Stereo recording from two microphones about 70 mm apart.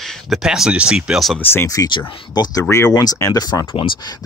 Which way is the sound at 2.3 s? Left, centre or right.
Left.